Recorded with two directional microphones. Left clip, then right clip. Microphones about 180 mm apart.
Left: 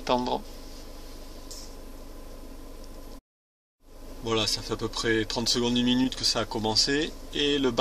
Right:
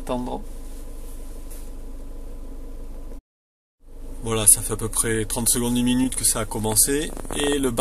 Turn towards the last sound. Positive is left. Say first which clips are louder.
# right 2 dB
turn(degrees=5)  # may be behind; listen again after turning